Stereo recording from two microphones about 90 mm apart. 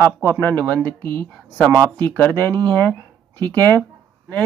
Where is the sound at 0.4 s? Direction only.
20° left (ahead or behind).